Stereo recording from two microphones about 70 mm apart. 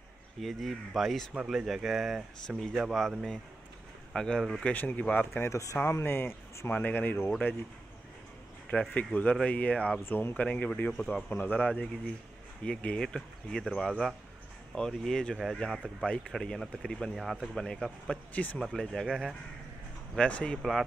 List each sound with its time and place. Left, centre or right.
0.4 s speech: centre
4.1 s speech: centre
4.7 s speech: left
5.3 s speech: left
5.9 s speech: left
8.6 s speech: centre
10.0 s speech: left
10.3 s speech: centre
16.1 s speech: centre
17.1 s speech: centre
18.3 s speech: left
18.6 s speech: centre
20.2 s speech: centre